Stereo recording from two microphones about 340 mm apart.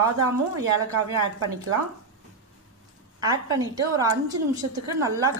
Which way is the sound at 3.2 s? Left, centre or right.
Centre.